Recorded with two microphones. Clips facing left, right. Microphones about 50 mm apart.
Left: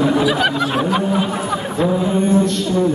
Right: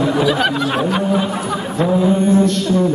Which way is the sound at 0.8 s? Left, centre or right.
Centre.